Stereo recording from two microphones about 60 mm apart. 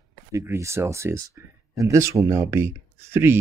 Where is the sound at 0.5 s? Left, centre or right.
Right.